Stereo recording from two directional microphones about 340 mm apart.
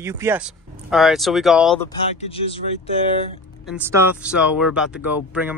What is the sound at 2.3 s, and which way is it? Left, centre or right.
Speech, centre.